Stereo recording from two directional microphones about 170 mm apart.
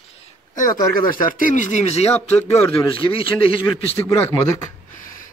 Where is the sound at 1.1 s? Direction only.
50° left (ahead or behind); by 3.6 s 30° left (ahead or behind).